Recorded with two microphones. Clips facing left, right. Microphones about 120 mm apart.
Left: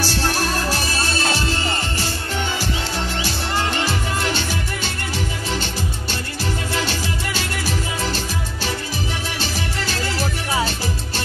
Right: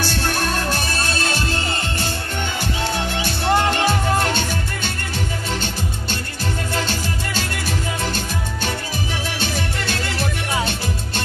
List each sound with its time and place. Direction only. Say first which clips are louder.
0.9 s music: left 1 dB; 50° right (ahead or behind)
3.3 s music: right 8 dB; 55° right (ahead or behind)
6.7 s music: even; 50° right (ahead or behind)
10.1 s music: left 2 dB; 5° left (ahead or behind)